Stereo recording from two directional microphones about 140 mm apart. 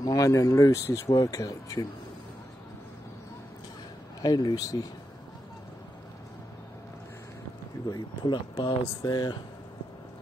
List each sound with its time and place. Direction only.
0.0 s speech: 25° left (ahead or behind)
4.2 s speech: 30° left (ahead or behind)
7.9 s speech: 35° left (ahead or behind)